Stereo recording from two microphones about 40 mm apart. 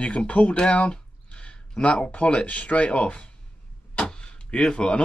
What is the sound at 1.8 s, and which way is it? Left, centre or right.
Speech, left.